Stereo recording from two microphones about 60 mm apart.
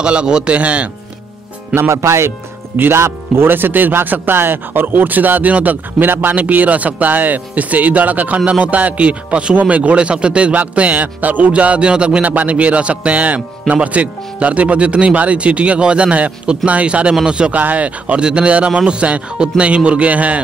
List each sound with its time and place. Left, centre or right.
0.0 s a man's voice: centre
1.8 s a man's voice: right